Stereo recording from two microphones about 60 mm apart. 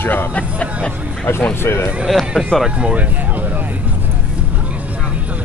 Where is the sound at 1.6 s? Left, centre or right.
Left.